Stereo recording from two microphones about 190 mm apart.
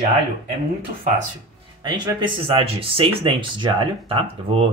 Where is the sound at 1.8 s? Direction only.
20° right (ahead or behind).